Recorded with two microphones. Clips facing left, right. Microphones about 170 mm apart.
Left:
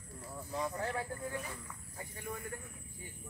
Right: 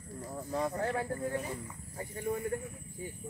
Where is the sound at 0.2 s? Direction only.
40° right (ahead or behind).